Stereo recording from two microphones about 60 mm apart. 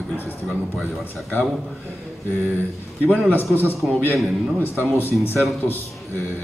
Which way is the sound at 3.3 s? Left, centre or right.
Left.